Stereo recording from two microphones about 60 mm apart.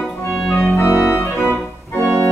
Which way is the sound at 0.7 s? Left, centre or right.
Left.